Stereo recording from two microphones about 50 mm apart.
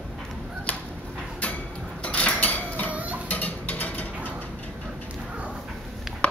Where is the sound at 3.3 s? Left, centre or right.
Left.